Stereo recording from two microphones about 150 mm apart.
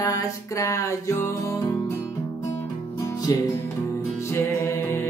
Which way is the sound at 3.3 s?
25° left (ahead or behind).